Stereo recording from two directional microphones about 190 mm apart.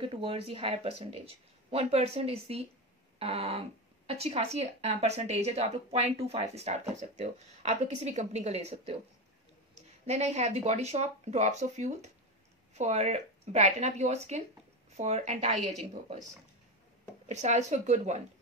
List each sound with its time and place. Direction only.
0.1 s speech: 30° right (ahead or behind)
17.3 s speech: 35° right (ahead or behind)